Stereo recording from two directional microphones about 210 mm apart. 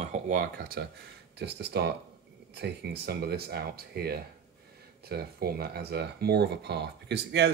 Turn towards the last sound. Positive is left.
turn(degrees=-55)  # may be behind; listen again after turning